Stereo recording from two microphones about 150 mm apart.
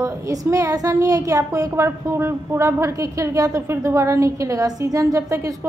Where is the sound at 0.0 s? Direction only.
20° right (ahead or behind).